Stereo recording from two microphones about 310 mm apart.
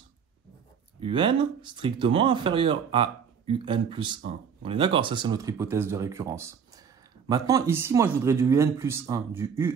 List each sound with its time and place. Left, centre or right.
1.0 s speech: centre